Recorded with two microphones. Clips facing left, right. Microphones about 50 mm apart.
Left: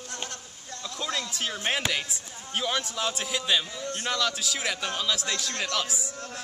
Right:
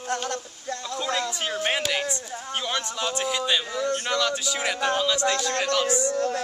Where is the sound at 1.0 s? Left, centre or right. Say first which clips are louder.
Right 3 dB; centre.